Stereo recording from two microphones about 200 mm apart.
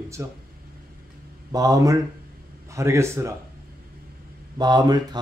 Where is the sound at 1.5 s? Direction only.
20° right (ahead or behind).